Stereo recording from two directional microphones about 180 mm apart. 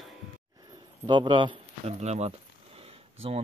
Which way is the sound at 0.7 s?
25° right (ahead or behind).